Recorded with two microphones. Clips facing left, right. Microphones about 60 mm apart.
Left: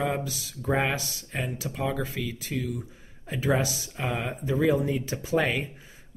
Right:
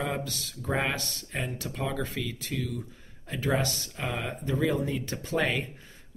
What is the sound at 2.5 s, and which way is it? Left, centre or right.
Speech, centre.